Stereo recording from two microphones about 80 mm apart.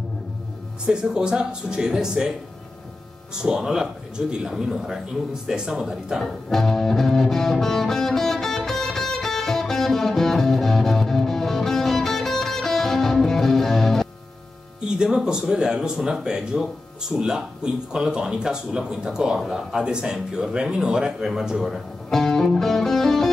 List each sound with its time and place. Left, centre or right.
0.8 s speech: centre
3.4 s speech: centre
6.5 s music: centre
15.0 s speech: centre
22.1 s music: centre